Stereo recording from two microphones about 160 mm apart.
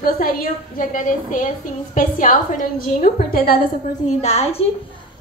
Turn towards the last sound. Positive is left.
turn(degrees=40)  # may be behind; listen again after turning